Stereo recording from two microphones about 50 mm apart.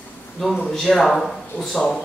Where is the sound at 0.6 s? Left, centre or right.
Centre.